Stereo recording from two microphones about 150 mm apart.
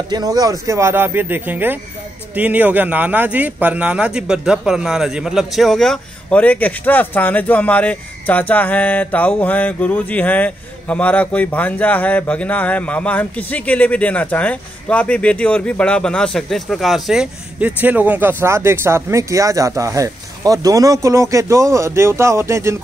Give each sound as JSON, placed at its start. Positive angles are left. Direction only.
{"t": 0.1, "sound": "speech", "side_deg": -25}